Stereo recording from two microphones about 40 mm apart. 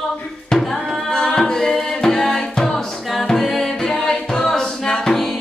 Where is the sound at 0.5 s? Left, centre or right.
Centre.